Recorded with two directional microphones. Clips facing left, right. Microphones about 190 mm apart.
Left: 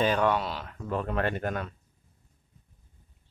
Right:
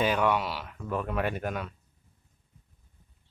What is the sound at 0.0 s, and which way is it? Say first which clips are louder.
Speech: left 1 dB; 10° right (ahead or behind).